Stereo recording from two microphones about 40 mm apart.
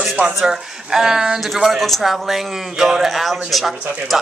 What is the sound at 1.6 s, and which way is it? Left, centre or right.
Speech, centre.